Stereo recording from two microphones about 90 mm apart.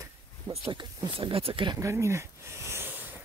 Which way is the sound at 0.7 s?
65° right (ahead or behind).